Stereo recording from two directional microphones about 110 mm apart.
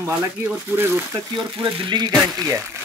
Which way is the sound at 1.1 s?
45° right (ahead or behind).